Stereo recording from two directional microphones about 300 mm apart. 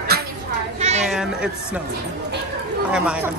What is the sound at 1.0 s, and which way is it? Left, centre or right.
Speech, centre.